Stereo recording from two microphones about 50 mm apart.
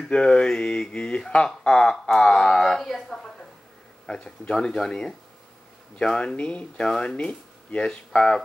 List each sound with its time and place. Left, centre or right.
0.1 s speech: centre
4.0 s speech: centre